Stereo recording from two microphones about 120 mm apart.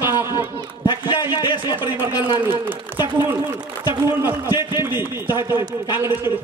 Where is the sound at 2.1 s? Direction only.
40° left (ahead or behind).